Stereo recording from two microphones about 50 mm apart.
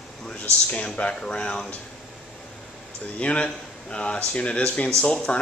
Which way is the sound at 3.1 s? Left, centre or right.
Left.